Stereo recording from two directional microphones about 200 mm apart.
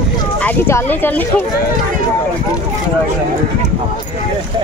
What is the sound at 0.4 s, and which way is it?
Speech, 10° left (ahead or behind).